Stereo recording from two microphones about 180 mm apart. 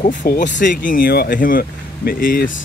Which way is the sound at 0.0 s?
45° left (ahead or behind).